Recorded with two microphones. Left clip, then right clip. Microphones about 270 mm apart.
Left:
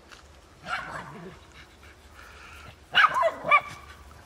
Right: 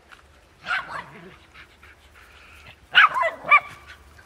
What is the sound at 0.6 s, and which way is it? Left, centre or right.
Dog, centre.